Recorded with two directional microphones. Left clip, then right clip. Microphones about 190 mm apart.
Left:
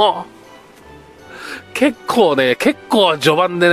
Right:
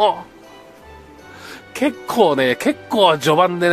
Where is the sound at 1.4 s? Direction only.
15° left (ahead or behind).